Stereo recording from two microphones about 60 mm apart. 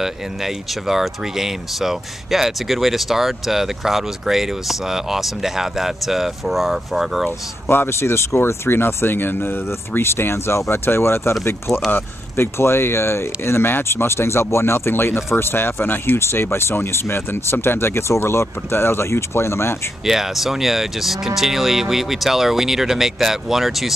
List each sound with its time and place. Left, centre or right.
0.0 s speech: centre
7.2 s speech: left
20.1 s speech: centre